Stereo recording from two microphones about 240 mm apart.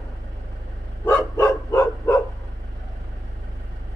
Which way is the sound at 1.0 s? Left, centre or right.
Centre.